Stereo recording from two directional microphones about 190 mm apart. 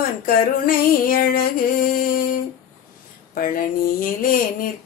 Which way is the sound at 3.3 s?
45° left (ahead or behind).